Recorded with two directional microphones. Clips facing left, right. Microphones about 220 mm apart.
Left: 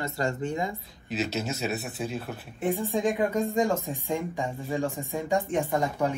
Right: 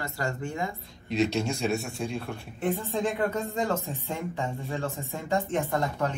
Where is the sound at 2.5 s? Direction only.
15° left (ahead or behind).